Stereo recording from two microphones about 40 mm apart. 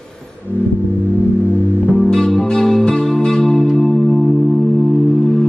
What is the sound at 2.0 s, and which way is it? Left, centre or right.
Music, centre.